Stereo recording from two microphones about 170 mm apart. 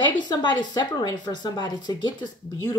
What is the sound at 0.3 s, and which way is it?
Speech, 25° left (ahead or behind).